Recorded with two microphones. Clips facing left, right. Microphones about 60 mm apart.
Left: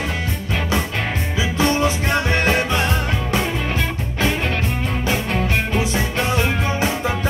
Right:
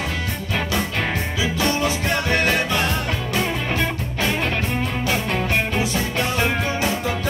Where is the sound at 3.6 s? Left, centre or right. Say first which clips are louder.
Even; centre.